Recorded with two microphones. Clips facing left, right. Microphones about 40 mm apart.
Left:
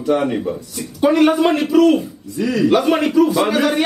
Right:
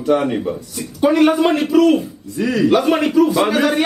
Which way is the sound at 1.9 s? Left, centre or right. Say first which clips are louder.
Even; right.